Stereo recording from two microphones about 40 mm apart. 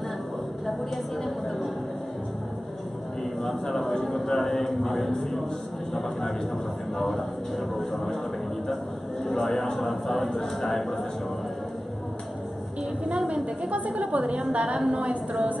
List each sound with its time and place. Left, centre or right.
0.7 s a sound: centre
3.4 s a man's voice: centre
7.0 s speech: centre
9.2 s speech: centre
13.3 s a woman's voice: right